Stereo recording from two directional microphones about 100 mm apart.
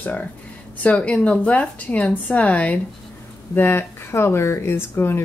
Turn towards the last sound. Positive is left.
turn(degrees=25)  # may be behind; listen again after turning